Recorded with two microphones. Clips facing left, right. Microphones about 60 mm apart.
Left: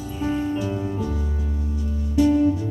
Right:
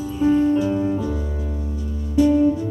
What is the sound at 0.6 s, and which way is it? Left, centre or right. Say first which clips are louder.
Music: right 6 dB; centre.